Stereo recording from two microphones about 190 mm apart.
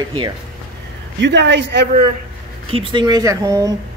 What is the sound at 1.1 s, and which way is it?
Speech, 65° right (ahead or behind).